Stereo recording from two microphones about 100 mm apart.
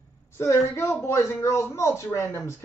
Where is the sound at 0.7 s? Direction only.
25° left (ahead or behind).